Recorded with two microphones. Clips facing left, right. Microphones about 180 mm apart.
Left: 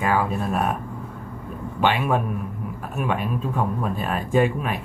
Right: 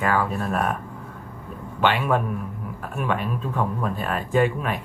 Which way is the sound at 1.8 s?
15° left (ahead or behind).